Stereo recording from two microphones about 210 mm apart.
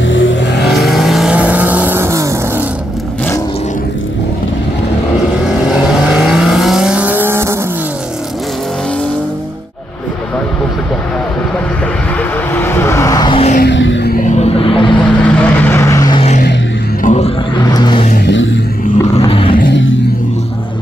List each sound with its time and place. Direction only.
0.1 s vehicle: 65° left (ahead or behind)
0.7 s vehicle: centre (ahead or behind)
6.0 s vehicle: 5° right (ahead or behind)
12.5 s vehicle: 10° left (ahead or behind); by 13.6 s 25° left (ahead or behind)
13.6 s music: 60° left (ahead or behind)
14.1 s music: 30° left (ahead or behind)
15.0 s vehicle: 5° left (ahead or behind)
17.0 s a sound: 35° left (ahead or behind)
17.6 s vehicle: 20° left (ahead or behind)
18.2 s a sound: 60° left (ahead or behind)
19.1 s a sound: 25° left (ahead or behind)